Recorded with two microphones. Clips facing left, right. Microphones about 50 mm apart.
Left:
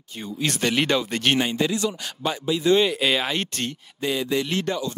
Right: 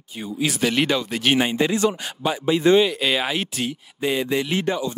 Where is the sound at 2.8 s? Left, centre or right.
Centre.